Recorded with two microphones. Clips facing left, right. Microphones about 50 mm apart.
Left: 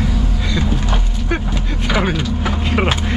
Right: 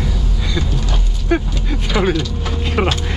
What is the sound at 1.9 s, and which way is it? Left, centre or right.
Vehicle, centre.